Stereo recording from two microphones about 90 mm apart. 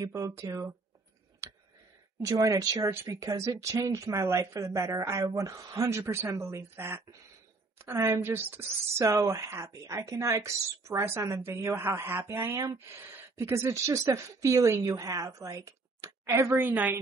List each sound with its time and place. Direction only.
0.0 s a woman's voice: 35° right (ahead or behind)
1.4 s clicking: 30° right (ahead or behind)
2.2 s a woman's voice: 35° right (ahead or behind)
5.8 s a woman's voice: 30° right (ahead or behind)
16.5 s speech: 20° right (ahead or behind)